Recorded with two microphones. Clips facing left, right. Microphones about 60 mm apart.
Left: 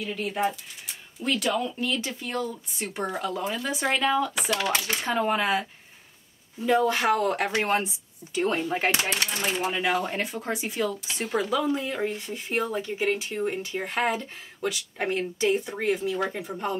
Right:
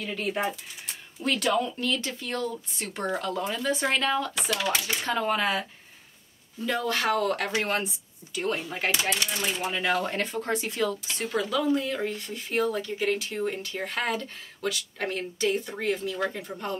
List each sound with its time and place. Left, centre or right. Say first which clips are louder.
0.0 s speech: left 2 dB; centre
4.6 s speech: even; left
5.0 s speech: left 1 dB; centre
8.6 s speech: left 3 dB; left
9.6 s speech: left 1 dB; centre
11.3 s speech: even; left